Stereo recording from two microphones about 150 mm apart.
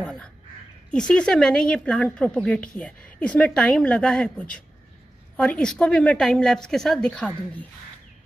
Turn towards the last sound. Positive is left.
turn(degrees=10)  # may be behind; listen again after turning